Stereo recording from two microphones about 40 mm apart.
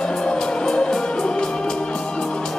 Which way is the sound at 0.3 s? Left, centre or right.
Left.